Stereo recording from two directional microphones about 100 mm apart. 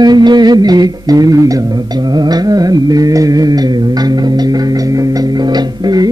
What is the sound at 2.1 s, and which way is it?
Music, 40° right (ahead or behind).